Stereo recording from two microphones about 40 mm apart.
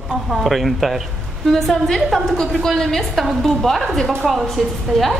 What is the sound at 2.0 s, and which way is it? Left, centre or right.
Speech, centre.